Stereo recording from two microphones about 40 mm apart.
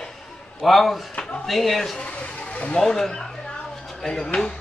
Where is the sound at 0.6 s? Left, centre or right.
Centre.